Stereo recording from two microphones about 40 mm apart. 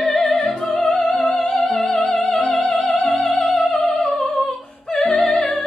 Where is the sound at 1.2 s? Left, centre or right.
Left.